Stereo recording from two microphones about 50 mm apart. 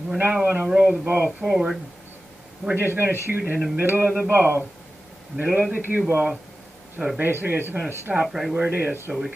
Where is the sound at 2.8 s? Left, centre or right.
Right.